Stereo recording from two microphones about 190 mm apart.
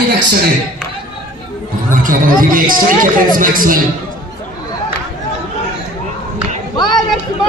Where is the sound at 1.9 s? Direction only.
45° right (ahead or behind).